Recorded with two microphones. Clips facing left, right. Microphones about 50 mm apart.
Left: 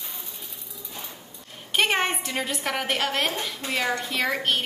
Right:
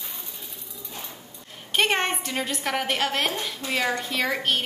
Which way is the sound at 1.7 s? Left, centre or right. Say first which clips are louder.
Even; centre.